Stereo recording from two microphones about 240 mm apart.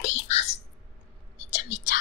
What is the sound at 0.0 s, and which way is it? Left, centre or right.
Whispering, left.